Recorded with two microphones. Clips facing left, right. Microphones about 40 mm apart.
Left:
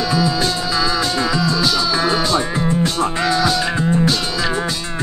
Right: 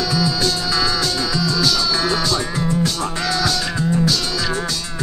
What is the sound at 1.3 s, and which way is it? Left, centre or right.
Music, left.